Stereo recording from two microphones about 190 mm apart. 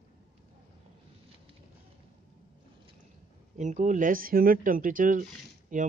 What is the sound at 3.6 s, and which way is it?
Speech, 40° right (ahead or behind).